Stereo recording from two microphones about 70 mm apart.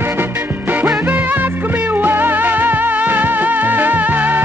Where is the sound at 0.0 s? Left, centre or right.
Right.